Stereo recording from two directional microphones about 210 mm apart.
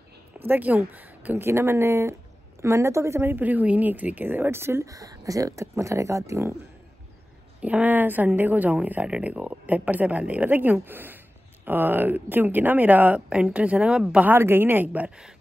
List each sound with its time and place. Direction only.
0.5 s speech: 10° right (ahead or behind)
7.6 s speech: 5° right (ahead or behind)